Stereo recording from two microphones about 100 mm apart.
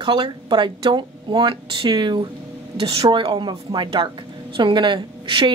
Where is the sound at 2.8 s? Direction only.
70° right (ahead or behind); by 5.5 s 50° right (ahead or behind).